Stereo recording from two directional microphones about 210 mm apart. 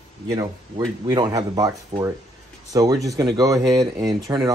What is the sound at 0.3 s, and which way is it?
Speech, 20° right (ahead or behind).